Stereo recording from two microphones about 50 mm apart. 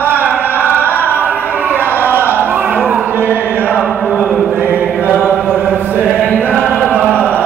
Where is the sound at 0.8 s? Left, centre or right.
Left.